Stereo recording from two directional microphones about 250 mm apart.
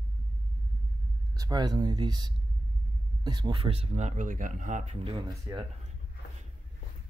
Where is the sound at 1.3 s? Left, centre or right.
Centre.